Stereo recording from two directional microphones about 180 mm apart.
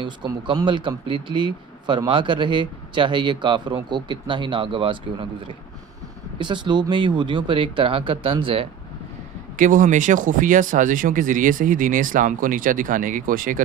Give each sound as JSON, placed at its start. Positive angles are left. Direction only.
{"t": 0.0, "sound": "speech", "side_deg": -25}
{"t": 6.3, "sound": "speech", "side_deg": -25}
{"t": 9.6, "sound": "speech", "side_deg": -50}